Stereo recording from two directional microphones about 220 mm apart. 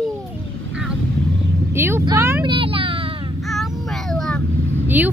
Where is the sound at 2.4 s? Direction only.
25° right (ahead or behind).